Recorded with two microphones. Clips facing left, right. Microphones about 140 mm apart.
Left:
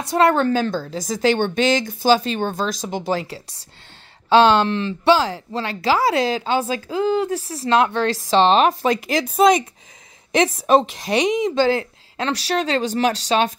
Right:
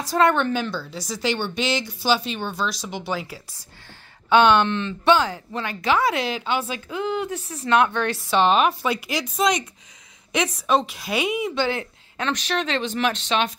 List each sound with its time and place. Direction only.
0.0 s a woman's voice: 25° left (ahead or behind)
11.1 s speech: 40° left (ahead or behind)